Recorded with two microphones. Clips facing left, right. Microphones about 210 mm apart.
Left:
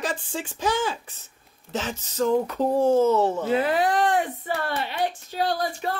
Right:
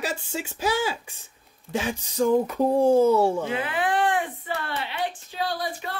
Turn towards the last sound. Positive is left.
turn(degrees=45)  # may be behind; listen again after turning